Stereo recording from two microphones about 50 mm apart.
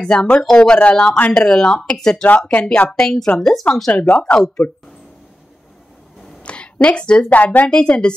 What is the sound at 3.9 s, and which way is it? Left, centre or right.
Speech, left.